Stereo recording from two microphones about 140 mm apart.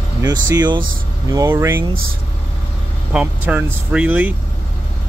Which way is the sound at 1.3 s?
25° right (ahead or behind).